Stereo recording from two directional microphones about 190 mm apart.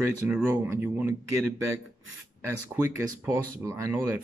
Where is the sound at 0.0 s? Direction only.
10° right (ahead or behind).